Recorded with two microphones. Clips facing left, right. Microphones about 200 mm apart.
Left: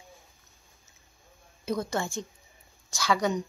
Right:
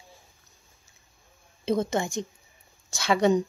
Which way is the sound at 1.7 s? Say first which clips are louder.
Right 4 dB; 25° right (ahead or behind).